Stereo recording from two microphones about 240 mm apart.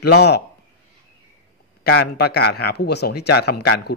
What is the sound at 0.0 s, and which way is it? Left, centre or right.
Speech, left.